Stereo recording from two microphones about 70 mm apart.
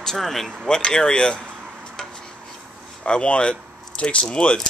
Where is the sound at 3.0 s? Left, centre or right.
Centre.